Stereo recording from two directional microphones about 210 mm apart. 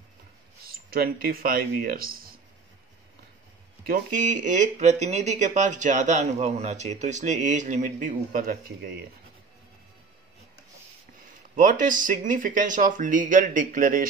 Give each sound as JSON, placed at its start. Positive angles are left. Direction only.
{"t": 0.7, "sound": "speech", "side_deg": -45}
{"t": 3.8, "sound": "speech", "side_deg": -40}
{"t": 11.5, "sound": "speech", "side_deg": -35}